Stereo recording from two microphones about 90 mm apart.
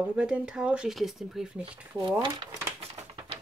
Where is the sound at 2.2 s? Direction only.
60° right (ahead or behind).